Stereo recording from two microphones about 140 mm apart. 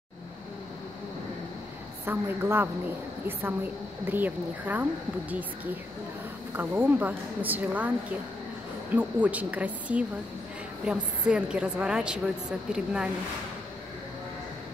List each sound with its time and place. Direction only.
2.0 s a woman's voice: 15° right (ahead or behind)
4.0 s a woman's voice: 10° right (ahead or behind)
6.5 s a woman's voice: 15° right (ahead or behind)
8.9 s a woman's voice: 10° right (ahead or behind)